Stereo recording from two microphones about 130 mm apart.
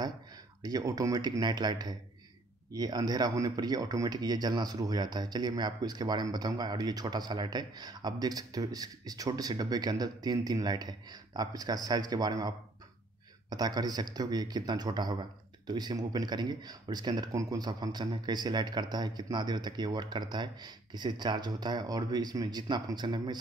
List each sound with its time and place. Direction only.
0.6 s speech: 30° right (ahead or behind)